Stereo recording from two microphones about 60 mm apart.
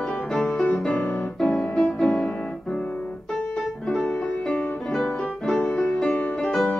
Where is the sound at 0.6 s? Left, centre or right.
Centre.